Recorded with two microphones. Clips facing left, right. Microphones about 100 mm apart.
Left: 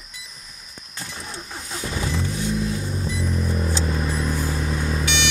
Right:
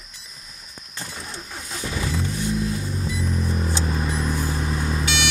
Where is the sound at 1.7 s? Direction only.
25° left (ahead or behind).